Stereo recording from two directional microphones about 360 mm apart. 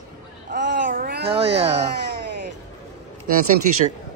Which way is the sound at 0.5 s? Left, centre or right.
Right.